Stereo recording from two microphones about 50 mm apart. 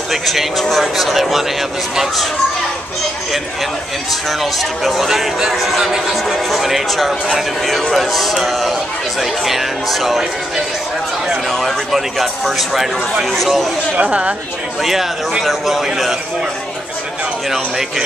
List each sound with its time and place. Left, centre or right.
0.1 s a man's voice: centre
4.3 s a man's voice: centre
11.5 s a man's voice: centre
13.9 s speech: right
14.8 s a man's voice: centre
17.5 s speech: centre